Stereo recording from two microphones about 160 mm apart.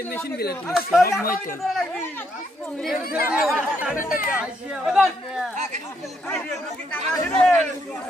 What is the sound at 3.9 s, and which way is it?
Speech, 60° left (ahead or behind).